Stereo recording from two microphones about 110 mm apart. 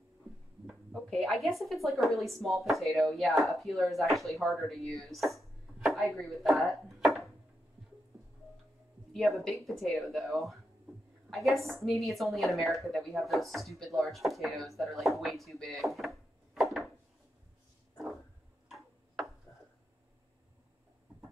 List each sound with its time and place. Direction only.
0.7 s speech: centre (ahead or behind)
9.1 s a woman's voice: centre (ahead or behind)